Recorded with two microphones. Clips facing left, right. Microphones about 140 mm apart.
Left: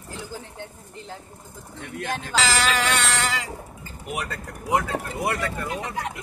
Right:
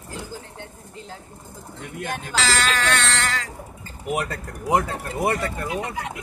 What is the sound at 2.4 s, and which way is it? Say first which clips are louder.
Speech: left 1 dB; 10° left (ahead or behind).